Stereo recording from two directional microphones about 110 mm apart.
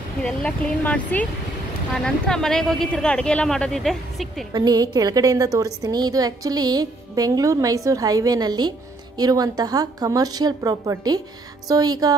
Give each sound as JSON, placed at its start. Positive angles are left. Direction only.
{"t": 0.2, "sound": "speech", "side_deg": 10}
{"t": 4.5, "sound": "speech", "side_deg": -35}